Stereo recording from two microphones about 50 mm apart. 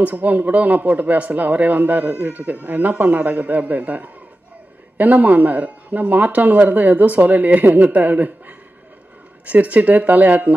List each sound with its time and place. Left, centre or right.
0.0 s speech: right